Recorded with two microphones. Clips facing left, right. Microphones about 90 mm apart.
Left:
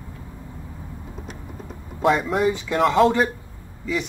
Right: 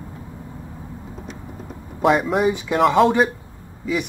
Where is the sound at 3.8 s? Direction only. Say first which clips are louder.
Right 2 dB; 15° right (ahead or behind).